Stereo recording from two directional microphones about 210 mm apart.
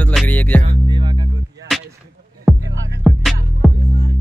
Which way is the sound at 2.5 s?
Centre (ahead or behind).